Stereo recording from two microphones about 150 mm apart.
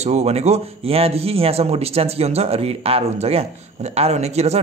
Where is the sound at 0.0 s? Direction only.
45° right (ahead or behind).